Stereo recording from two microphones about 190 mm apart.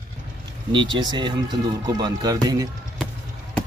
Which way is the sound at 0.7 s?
25° right (ahead or behind).